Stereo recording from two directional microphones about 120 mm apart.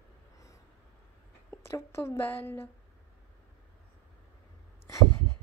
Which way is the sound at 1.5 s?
20° left (ahead or behind).